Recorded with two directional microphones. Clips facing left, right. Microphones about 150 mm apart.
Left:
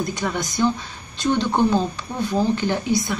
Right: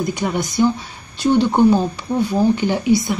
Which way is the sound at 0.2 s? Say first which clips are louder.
Right 4 dB; 20° right (ahead or behind).